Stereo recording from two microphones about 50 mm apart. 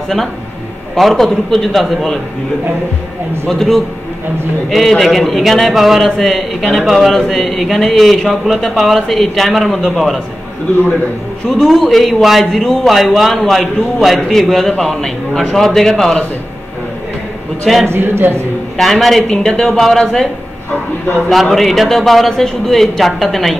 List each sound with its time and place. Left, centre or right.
0.9 s a man's voice: centre
3.4 s a man's voice: centre
11.4 s a man's voice: centre
17.8 s speech: right
18.8 s a man's voice: centre
19.2 s speech: centre
21.5 s a man's voice: centre